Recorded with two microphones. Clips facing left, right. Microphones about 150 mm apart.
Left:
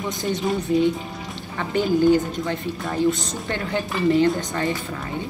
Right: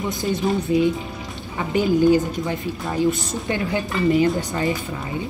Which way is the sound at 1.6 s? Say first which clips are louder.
Right 1 dB; 15° right (ahead or behind).